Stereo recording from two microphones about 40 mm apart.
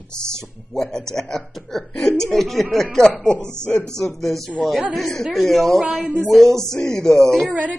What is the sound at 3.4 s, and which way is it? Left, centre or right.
Speech, right.